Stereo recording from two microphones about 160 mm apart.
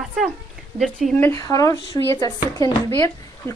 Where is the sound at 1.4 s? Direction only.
20° left (ahead or behind).